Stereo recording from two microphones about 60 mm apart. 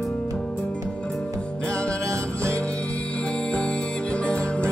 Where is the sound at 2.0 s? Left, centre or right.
Right.